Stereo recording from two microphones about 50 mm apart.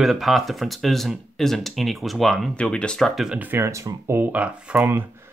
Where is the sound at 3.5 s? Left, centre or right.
Right.